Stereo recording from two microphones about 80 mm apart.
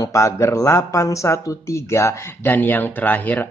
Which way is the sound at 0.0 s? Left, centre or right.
Left.